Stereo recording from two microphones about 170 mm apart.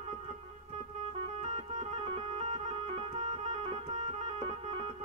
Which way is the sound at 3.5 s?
40° right (ahead or behind).